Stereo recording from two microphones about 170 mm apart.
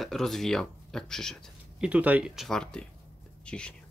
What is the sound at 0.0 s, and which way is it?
Speech, centre (ahead or behind).